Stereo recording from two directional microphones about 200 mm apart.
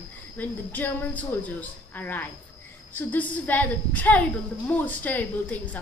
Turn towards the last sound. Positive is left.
turn(degrees=10)  # may be behind; listen again after turning